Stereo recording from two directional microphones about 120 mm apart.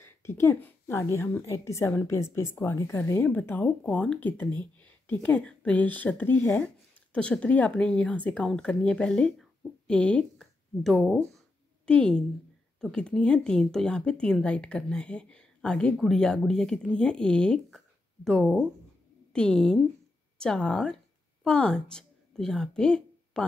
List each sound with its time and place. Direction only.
0.0 s a woman's voice: 20° left (ahead or behind); by 11.1 s centre (ahead or behind)
11.3 s a sound: 5° left (ahead or behind)
12.8 s a woman's voice: 5° left (ahead or behind)